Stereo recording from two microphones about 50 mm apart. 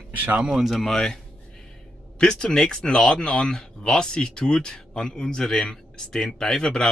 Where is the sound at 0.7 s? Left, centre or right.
Centre.